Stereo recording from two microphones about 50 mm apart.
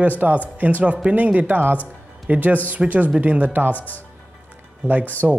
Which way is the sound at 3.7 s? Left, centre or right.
Left.